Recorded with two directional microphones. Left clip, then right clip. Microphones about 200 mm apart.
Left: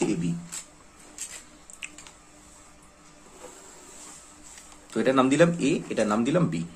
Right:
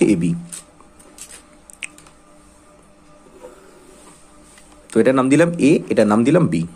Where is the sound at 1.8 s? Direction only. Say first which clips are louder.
Right 8 dB; 40° right (ahead or behind).